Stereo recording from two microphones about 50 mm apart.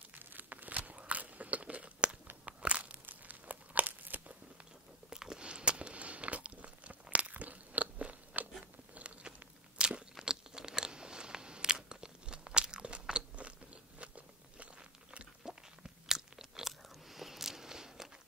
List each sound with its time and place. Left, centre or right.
0.1 s biting: right
2.4 s crumpling: right
5.1 s a sound: centre; by 8.2 s right
8.9 s biting: right
9.8 s crunch: centre
13.4 s biting: right
15.4 s crunch: centre